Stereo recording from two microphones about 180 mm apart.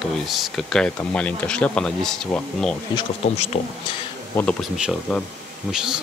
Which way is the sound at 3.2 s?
35° left (ahead or behind).